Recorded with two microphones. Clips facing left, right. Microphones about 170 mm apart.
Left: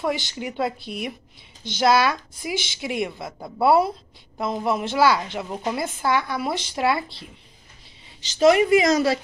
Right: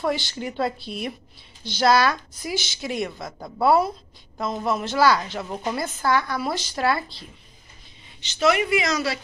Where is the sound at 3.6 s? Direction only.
25° left (ahead or behind).